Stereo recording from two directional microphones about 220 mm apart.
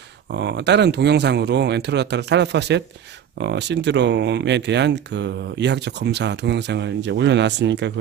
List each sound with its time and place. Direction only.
0.4 s speech: 50° right (ahead or behind)